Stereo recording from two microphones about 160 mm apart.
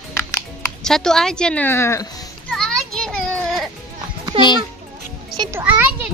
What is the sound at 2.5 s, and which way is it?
Children playing, 5° left (ahead or behind).